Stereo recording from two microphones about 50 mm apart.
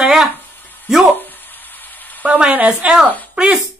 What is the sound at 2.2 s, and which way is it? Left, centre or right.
Speech, right.